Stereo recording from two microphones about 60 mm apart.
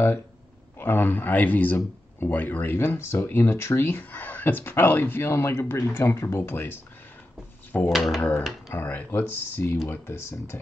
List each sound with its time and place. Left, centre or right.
0.7 s speech: left
3.8 s speech: left
7.9 s speech: centre
8.2 s speech: left